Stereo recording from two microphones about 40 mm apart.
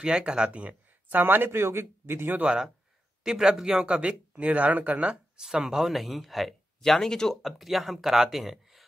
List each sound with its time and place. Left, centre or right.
0.0 s speech: right
1.2 s speech: right
3.3 s speech: centre
3.8 s speech: right
5.4 s speech: centre
5.9 s speech: centre
6.8 s speech: centre
7.4 s speech: centre